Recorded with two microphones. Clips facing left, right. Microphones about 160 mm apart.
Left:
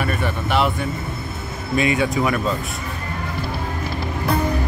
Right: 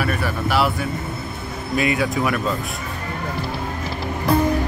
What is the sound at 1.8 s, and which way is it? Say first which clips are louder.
Speech: left 1 dB; centre (ahead or behind).